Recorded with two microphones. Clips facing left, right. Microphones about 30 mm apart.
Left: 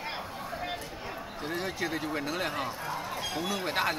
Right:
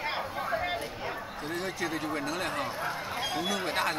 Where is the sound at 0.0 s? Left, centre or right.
Centre.